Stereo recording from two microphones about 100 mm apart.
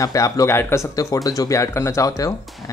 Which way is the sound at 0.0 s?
35° left (ahead or behind).